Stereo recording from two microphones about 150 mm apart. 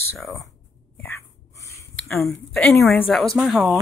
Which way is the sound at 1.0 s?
15° left (ahead or behind).